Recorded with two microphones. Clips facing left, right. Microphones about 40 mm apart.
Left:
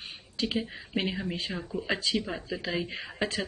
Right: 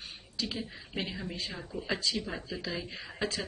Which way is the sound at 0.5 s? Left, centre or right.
Left.